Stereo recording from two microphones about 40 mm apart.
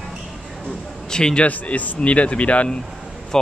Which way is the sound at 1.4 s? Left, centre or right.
Left.